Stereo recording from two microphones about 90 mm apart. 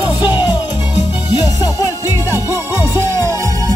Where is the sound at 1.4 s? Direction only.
45° left (ahead or behind).